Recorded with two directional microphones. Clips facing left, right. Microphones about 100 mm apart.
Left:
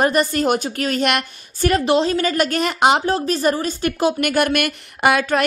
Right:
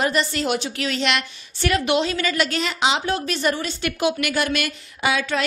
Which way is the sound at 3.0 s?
35° left (ahead or behind).